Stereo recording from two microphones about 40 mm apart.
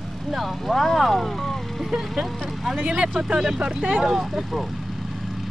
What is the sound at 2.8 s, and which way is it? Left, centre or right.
Speech, right.